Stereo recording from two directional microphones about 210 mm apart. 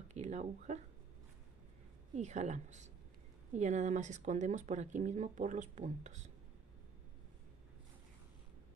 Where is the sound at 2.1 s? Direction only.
35° right (ahead or behind).